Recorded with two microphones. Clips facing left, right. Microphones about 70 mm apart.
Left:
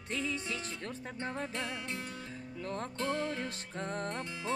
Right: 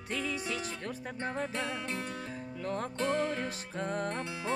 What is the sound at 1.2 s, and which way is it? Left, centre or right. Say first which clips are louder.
Music: right 3 dB; right.